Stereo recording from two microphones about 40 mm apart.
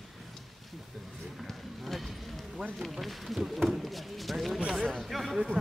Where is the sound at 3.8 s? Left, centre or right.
Centre.